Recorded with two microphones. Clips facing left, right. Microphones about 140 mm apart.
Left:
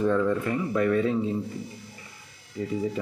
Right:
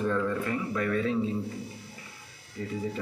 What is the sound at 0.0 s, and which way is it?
Speech, 20° left (ahead or behind).